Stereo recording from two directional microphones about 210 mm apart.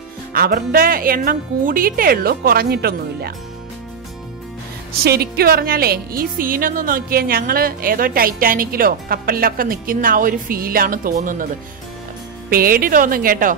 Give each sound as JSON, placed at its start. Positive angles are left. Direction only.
{"t": 0.3, "sound": "speech", "side_deg": -45}
{"t": 5.0, "sound": "speech", "side_deg": -50}
{"t": 12.4, "sound": "speech", "side_deg": -45}